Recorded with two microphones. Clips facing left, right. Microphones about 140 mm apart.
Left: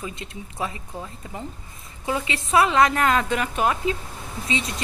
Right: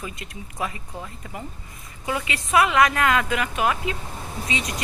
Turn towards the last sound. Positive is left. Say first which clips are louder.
# left 1 dB
turn(degrees=30)  # may be behind; listen again after turning